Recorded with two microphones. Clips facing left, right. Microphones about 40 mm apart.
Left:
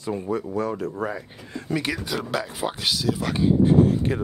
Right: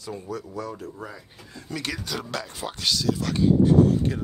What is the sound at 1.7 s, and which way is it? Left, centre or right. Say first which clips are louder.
Speech: left 5 dB; centre.